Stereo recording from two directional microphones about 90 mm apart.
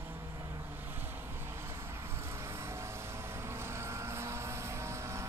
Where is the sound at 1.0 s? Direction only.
25° right (ahead or behind).